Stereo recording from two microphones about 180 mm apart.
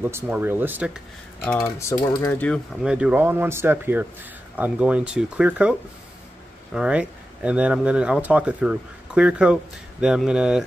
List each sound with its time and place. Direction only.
0.0 s speech: 10° right (ahead or behind)
1.4 s typing: 10° left (ahead or behind)
2.4 s speech: centre (ahead or behind)